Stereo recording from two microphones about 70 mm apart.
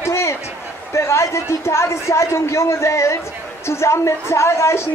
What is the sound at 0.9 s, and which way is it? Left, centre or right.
A man's voice, left.